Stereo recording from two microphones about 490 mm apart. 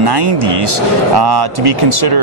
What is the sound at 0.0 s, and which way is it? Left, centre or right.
Speech, right.